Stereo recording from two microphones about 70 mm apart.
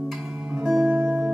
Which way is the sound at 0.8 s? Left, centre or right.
Right.